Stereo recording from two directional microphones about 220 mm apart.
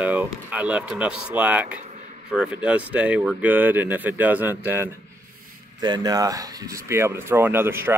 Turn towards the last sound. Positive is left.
turn(degrees=-10)  # may be behind; listen again after turning